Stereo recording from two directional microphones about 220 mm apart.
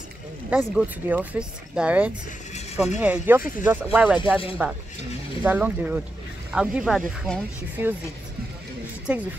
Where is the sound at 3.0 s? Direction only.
10° right (ahead or behind).